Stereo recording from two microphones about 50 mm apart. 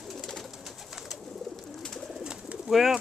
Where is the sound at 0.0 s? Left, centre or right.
Centre.